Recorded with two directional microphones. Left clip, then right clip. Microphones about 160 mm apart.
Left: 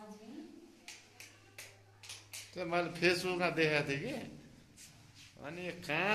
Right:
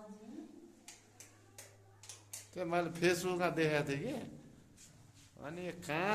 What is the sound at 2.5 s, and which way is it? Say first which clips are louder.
A man's voice: left 1 dB; 20° right (ahead or behind).